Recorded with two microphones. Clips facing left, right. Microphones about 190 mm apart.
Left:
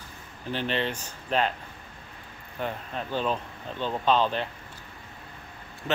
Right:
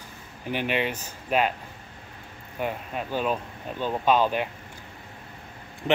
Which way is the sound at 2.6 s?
10° right (ahead or behind).